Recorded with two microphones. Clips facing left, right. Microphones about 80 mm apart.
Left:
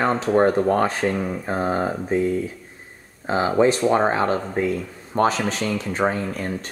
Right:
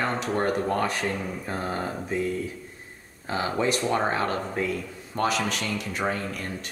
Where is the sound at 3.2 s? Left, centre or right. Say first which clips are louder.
Left 8 dB; left.